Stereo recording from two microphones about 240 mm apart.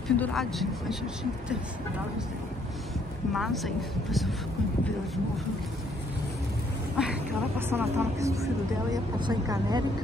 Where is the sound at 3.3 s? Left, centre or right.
Centre.